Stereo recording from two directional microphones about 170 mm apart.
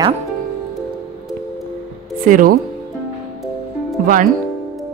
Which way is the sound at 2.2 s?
55° right (ahead or behind).